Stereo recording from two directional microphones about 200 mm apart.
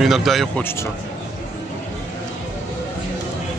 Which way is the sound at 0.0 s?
Centre (ahead or behind).